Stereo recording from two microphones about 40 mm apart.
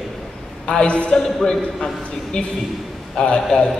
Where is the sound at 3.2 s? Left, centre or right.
Centre.